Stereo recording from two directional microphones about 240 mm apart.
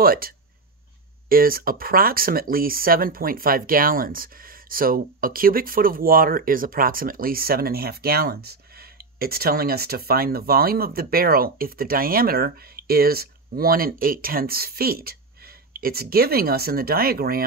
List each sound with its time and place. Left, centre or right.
0.0 s speech: right
1.3 s speech: right